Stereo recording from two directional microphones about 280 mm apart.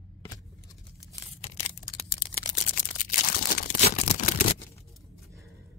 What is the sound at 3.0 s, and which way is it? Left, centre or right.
Crumpling, left.